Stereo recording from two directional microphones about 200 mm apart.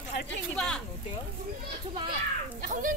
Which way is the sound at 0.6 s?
5° left (ahead or behind).